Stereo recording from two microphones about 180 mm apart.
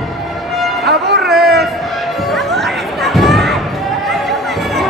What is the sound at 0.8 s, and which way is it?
Music, 65° right (ahead or behind).